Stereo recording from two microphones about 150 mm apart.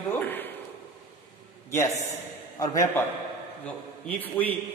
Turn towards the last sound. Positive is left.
turn(degrees=10)  # may be behind; listen again after turning